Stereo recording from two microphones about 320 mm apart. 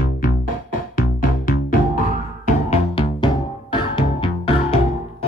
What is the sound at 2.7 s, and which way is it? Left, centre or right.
Music, centre.